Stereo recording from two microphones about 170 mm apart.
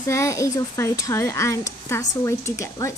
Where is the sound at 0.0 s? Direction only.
15° left (ahead or behind).